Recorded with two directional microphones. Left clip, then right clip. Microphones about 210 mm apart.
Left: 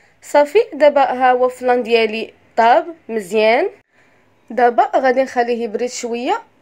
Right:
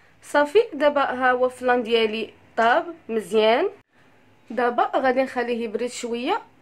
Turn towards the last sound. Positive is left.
turn(degrees=15)  # may be behind; listen again after turning